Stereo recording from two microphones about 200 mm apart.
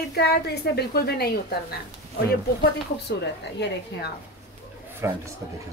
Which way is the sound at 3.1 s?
60° left (ahead or behind).